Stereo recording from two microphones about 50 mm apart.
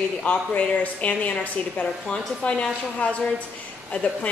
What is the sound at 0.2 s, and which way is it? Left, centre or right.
A woman's voice, left.